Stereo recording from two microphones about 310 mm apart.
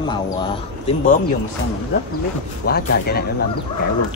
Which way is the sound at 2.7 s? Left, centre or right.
Left.